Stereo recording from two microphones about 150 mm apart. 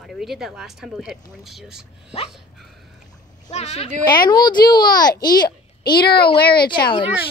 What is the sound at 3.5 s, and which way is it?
Speech, 45° left (ahead or behind).